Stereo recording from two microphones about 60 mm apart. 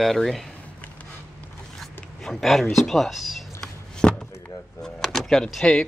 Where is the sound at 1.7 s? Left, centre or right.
Centre.